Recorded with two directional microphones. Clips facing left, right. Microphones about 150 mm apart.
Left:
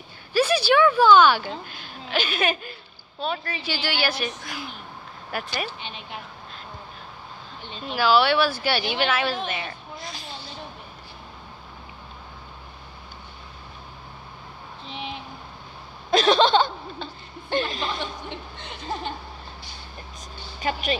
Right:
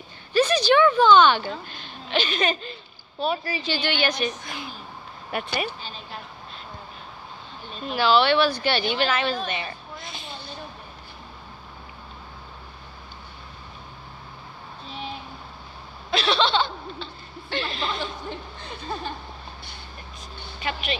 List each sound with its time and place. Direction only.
0.3 s speech: 10° left (ahead or behind)
3.2 s a woman's voice: 5° right (ahead or behind)
3.6 s a woman's voice: 5° left (ahead or behind)
5.8 s a woman's voice: 70° left (ahead or behind)
7.9 s a woman's voice: 5° left (ahead or behind)
9.5 s a sound: centre (ahead or behind)
14.9 s a sound: 20° left (ahead or behind)
16.1 s a sound: 45° left (ahead or behind)
18.6 s speech: 20° left (ahead or behind)
20.6 s a woman's voice: 40° left (ahead or behind)